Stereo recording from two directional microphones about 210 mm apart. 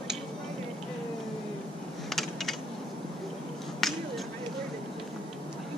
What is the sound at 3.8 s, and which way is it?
Finger snapping, centre (ahead or behind).